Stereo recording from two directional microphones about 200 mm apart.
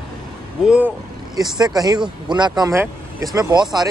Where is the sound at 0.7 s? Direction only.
5° right (ahead or behind).